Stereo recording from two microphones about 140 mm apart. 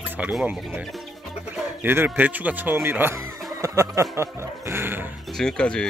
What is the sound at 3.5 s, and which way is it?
Snicker, 20° right (ahead or behind).